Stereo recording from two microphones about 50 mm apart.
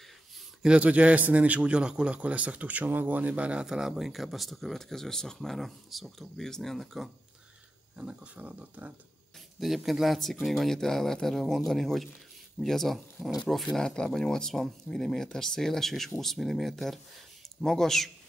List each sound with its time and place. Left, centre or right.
0.7 s a man's voice: right
3.6 s speech: centre
8.0 s a man's voice: right
9.6 s speech: centre
13.8 s speech: centre